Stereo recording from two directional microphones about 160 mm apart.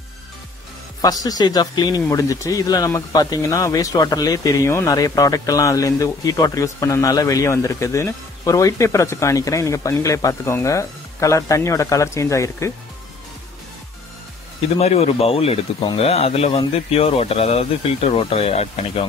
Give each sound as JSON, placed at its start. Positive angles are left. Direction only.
{"t": 1.0, "sound": "speech", "side_deg": 25}
{"t": 14.8, "sound": "speech", "side_deg": 40}